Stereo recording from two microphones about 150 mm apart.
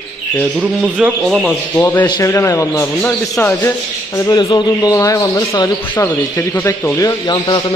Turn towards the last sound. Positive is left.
turn(degrees=25)  # may be behind; listen again after turning